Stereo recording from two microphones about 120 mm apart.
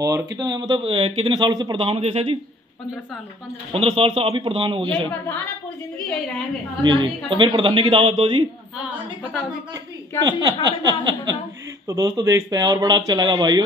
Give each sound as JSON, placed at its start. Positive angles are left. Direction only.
{"t": 0.0, "sound": "speech", "side_deg": -30}
{"t": 3.7, "sound": "speech", "side_deg": -55}
{"t": 6.8, "sound": "speech", "side_deg": -40}
{"t": 9.2, "sound": "a woman's voice", "side_deg": -5}
{"t": 10.2, "sound": "speech", "side_deg": -35}